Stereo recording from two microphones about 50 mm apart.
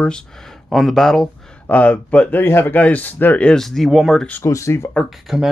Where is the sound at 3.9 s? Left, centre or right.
Centre.